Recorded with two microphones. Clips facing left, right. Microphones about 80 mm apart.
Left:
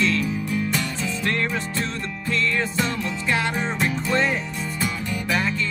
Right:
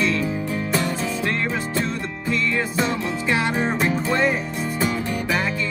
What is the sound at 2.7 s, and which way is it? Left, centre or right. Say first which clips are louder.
Music: right 2 dB; right.